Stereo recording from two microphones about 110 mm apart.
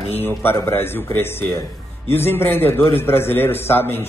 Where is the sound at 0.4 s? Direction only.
20° left (ahead or behind).